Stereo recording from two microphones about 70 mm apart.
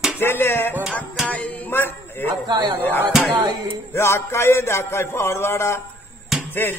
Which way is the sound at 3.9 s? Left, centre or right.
Left.